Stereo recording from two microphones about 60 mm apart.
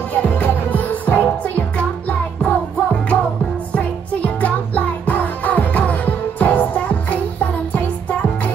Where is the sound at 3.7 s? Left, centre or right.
Left.